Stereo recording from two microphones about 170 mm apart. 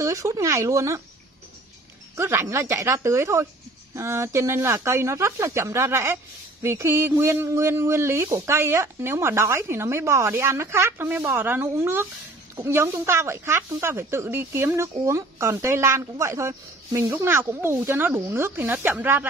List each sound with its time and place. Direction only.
0.0 s speech: 20° right (ahead or behind)
2.1 s speech: 15° right (ahead or behind)